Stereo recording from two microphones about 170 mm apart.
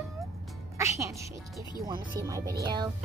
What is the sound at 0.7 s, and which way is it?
A child's voice, 20° right (ahead or behind).